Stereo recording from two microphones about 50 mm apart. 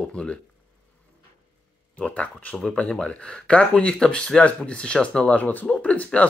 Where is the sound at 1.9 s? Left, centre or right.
Left.